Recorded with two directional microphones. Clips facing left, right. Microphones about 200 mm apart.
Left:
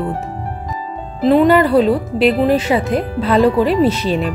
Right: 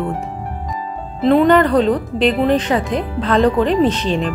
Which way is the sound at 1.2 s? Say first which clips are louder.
Left 1 dB; 5° left (ahead or behind).